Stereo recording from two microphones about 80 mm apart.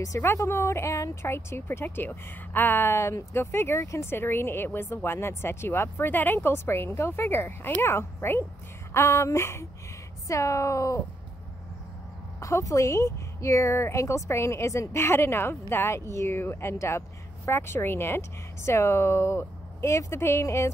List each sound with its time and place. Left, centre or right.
0.4 s speech: left
12.4 s speech: left